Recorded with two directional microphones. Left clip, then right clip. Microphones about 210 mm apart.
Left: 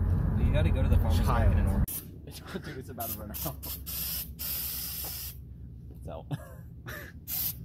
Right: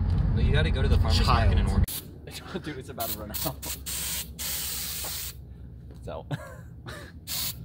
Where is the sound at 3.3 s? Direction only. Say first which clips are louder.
Right 6 dB; 15° right (ahead or behind).